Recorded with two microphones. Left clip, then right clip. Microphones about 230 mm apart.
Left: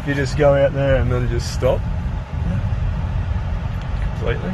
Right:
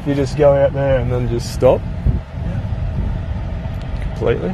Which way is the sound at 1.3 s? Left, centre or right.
Right.